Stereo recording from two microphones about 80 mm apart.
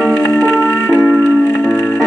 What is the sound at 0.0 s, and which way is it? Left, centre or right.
Music, centre.